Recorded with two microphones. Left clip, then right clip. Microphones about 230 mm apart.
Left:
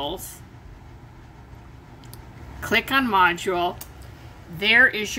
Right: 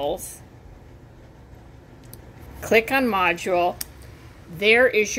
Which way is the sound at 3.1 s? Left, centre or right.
Centre.